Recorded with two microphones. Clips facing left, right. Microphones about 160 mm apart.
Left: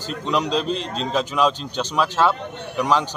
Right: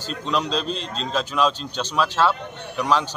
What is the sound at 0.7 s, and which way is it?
Speech, 65° left (ahead or behind).